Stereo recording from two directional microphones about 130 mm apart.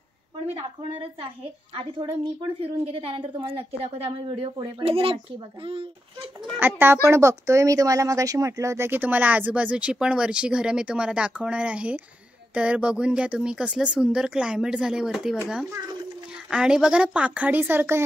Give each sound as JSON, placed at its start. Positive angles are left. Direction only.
{"t": 2.6, "sound": "a woman's voice", "side_deg": -45}
{"t": 6.6, "sound": "speech", "side_deg": -15}
{"t": 16.4, "sound": "speech", "side_deg": -5}